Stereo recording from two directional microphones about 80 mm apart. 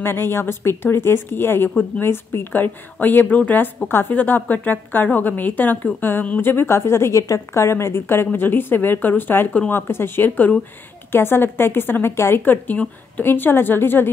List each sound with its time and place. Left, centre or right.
0.0 s a woman's voice: left